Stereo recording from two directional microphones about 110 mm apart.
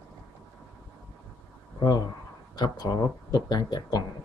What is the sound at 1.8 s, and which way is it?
Speech, 40° left (ahead or behind).